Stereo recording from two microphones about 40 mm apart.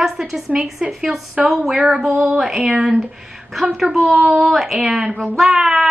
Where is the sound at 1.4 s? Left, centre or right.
Right.